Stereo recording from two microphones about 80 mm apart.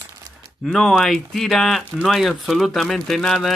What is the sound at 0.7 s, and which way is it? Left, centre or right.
Speech, centre.